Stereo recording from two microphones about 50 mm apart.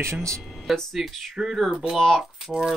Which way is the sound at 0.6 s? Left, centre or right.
Centre.